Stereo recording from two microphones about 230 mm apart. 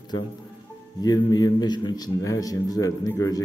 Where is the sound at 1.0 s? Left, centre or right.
Centre.